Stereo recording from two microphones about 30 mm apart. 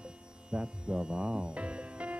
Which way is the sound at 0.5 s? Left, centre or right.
Right.